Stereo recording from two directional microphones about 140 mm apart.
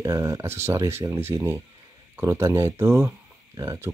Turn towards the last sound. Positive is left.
turn(degrees=-25)  # may be behind; listen again after turning